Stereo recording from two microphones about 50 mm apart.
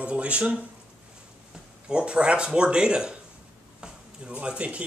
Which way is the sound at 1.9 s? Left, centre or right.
Centre.